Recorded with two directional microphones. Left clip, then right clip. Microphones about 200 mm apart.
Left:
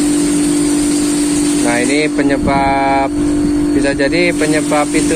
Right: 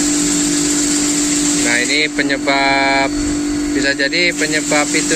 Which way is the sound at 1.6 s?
5° left (ahead or behind).